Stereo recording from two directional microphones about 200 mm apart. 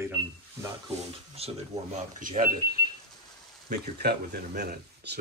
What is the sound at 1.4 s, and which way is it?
Speech, 30° right (ahead or behind).